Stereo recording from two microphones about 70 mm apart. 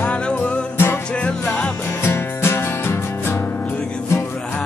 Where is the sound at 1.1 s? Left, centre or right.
Centre.